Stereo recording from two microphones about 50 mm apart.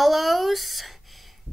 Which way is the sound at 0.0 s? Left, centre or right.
Centre.